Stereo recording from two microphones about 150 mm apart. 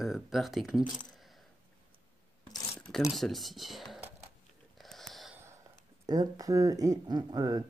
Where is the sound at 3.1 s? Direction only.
Centre (ahead or behind).